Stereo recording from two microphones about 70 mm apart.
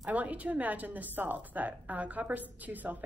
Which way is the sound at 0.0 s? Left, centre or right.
Right.